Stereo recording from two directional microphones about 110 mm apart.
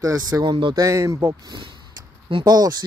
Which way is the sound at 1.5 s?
40° right (ahead or behind).